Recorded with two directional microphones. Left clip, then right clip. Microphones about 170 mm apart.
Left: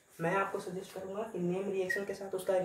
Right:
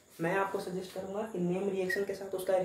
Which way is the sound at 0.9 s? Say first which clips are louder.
Right 2 dB; 15° left (ahead or behind).